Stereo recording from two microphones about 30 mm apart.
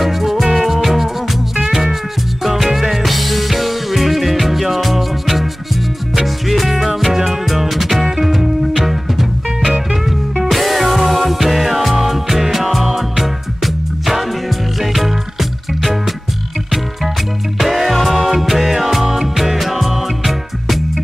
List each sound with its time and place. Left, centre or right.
0.0 s music: centre
2.4 s music: centre
10.4 s music: centre
17.6 s music: centre